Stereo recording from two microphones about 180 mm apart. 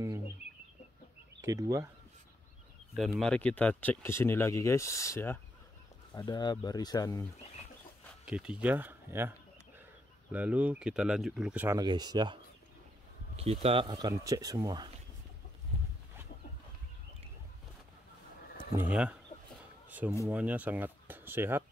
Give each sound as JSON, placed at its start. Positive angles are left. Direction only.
{"t": 1.4, "sound": "speech", "side_deg": -20}
{"t": 3.0, "sound": "speech", "side_deg": 0}
{"t": 8.3, "sound": "speech", "side_deg": -5}
{"t": 10.3, "sound": "speech", "side_deg": -10}
{"t": 13.4, "sound": "speech", "side_deg": -35}
{"t": 18.8, "sound": "speech", "side_deg": -5}